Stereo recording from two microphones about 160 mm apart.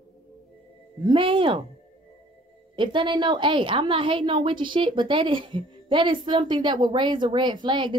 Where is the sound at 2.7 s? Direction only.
30° right (ahead or behind).